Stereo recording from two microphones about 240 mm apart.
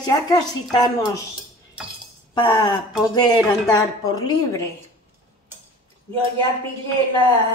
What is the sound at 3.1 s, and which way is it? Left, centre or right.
Dishes, centre.